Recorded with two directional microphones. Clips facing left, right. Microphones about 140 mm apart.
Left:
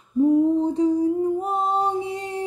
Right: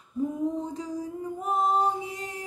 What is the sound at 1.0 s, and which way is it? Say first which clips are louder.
Music: left 12 dB; 30° left (ahead or behind).